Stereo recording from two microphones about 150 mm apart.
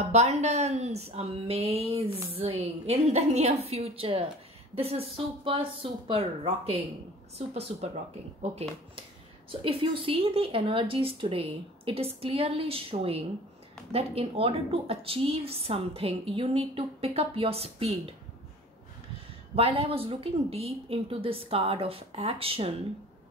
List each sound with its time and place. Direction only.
0.0 s a woman's voice: 45° right (ahead or behind)
9.5 s a woman's voice: 35° right (ahead or behind)
19.5 s a woman's voice: 40° right (ahead or behind)